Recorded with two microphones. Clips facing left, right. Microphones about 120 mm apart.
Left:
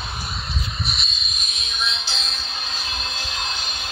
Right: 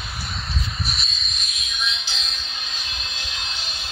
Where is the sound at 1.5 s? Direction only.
35° left (ahead or behind).